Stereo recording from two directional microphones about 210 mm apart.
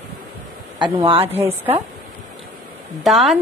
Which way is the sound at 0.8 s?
25° right (ahead or behind).